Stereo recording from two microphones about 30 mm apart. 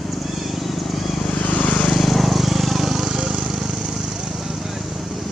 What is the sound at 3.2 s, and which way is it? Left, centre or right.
Vehicle, centre.